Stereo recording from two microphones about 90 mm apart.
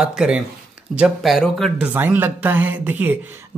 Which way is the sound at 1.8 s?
15° right (ahead or behind).